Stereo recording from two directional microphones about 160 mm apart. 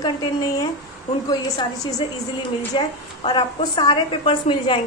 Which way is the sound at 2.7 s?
30° left (ahead or behind).